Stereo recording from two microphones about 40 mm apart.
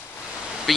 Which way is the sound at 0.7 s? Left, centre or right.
Centre.